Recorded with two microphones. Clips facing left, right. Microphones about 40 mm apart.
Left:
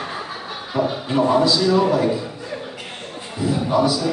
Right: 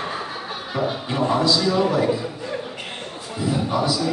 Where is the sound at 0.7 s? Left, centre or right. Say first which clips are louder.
Left 4 dB; centre.